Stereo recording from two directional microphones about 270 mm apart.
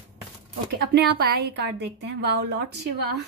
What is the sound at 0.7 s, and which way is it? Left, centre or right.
A woman's voice, right.